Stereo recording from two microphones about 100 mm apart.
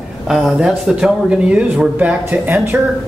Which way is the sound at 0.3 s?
5° right (ahead or behind).